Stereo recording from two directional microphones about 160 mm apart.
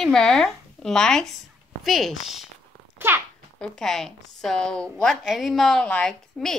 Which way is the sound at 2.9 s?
15° right (ahead or behind).